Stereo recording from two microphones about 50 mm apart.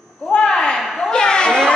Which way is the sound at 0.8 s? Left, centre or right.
Centre.